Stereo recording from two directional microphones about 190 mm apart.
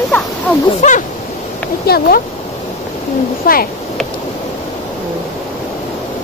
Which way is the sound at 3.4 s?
50° left (ahead or behind).